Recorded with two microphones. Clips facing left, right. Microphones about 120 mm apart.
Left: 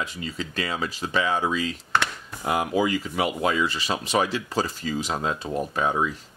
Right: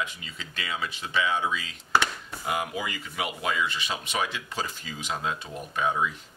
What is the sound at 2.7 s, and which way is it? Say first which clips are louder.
Speech: left 10 dB; 35° left (ahead or behind).